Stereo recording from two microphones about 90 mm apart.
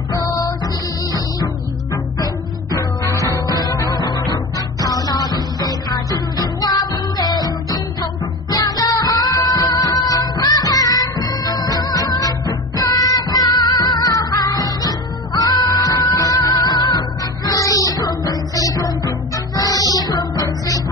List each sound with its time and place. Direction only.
0.2 s music: 40° left (ahead or behind)
3.0 s music: 45° left (ahead or behind)
4.7 s music: 45° left (ahead or behind)
17.5 s music: 40° left (ahead or behind)
20.1 s music: 55° left (ahead or behind)